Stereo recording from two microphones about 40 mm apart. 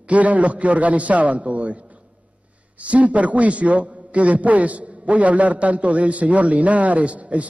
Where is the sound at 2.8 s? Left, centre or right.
Right.